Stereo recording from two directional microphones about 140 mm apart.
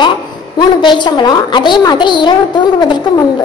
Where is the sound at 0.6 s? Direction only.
35° left (ahead or behind).